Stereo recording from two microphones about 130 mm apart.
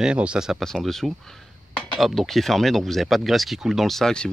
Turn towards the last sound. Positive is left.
turn(degrees=5)  # may be behind; listen again after turning